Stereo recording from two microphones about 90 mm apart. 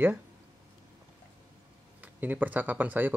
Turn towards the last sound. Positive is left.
turn(degrees=-20)  # may be behind; listen again after turning